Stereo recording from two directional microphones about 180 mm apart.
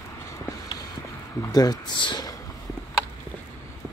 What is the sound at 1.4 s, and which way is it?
Speech, 20° left (ahead or behind).